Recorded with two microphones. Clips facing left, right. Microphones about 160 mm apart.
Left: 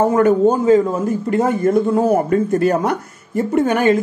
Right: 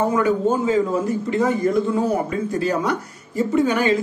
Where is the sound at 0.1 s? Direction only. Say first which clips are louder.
Left 6 dB; 45° left (ahead or behind).